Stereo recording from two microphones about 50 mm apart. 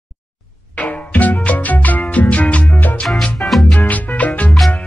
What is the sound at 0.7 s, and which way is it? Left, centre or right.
Music, left.